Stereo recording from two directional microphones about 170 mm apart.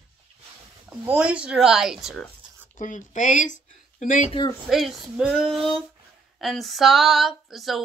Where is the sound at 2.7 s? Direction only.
50° left (ahead or behind).